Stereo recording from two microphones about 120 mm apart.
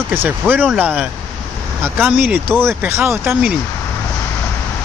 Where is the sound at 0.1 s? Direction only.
15° right (ahead or behind).